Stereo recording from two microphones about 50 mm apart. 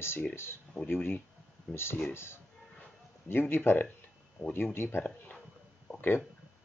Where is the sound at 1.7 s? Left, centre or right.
Left.